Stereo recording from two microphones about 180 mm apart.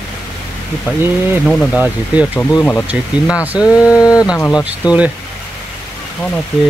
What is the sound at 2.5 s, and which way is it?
Speech, 15° left (ahead or behind).